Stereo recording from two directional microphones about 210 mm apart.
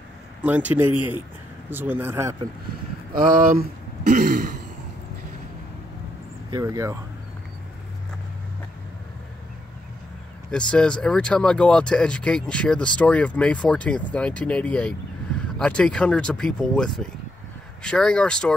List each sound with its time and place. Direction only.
0.4 s speech: 5° right (ahead or behind)
3.1 s speech: 40° right (ahead or behind)
6.5 s speech: 15° right (ahead or behind)
10.5 s speech: 5° left (ahead or behind)